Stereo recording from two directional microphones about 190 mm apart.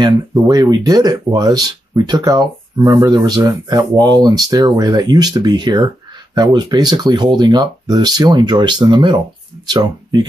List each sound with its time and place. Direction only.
0.0 s speech: 20° right (ahead or behind)